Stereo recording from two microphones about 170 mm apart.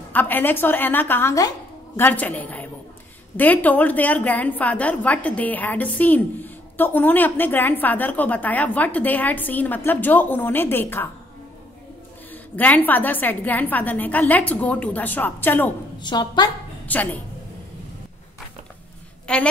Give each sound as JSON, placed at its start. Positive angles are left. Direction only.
{"t": 0.1, "sound": "a woman's voice", "side_deg": 10}
{"t": 12.3, "sound": "a woman's voice", "side_deg": 10}
{"t": 16.0, "sound": "a woman's voice", "side_deg": 25}
{"t": 16.8, "sound": "a woman's voice", "side_deg": 10}
{"t": 19.2, "sound": "a woman's voice", "side_deg": 5}